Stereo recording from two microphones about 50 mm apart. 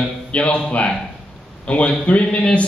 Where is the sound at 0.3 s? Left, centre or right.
Left.